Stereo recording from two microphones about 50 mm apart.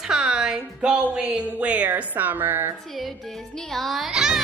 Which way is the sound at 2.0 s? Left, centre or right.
Right.